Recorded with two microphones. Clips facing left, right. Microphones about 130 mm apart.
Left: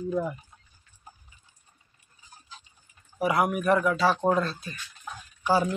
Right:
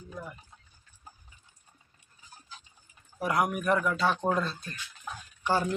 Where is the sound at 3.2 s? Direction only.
5° left (ahead or behind).